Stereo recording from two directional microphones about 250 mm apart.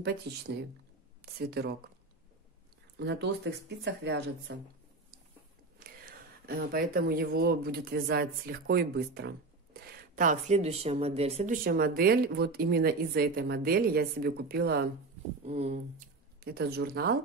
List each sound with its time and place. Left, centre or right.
0.3 s speech: right
3.0 s speech: right
5.9 s speech: right
15.4 s speech: right
16.3 s speech: right